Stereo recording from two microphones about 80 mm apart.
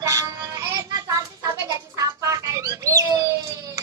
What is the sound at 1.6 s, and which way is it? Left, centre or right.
Bird, right.